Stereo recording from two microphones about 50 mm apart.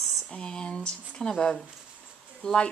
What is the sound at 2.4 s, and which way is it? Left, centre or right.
Speech, centre.